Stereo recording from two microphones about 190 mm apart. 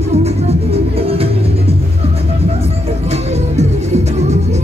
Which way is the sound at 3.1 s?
35° right (ahead or behind).